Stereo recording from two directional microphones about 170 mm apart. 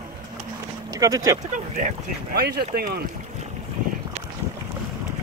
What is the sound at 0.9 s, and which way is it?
Speech, 20° right (ahead or behind).